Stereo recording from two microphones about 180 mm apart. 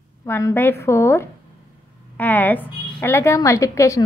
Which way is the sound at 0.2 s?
15° left (ahead or behind).